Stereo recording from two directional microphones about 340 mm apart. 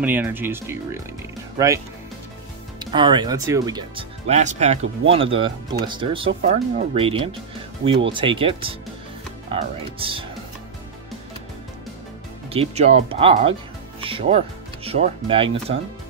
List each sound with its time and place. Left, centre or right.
0.0 s speech: centre
2.8 s speech: centre
12.5 s speech: centre